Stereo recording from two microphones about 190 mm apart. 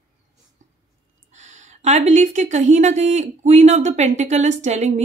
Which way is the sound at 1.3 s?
40° right (ahead or behind).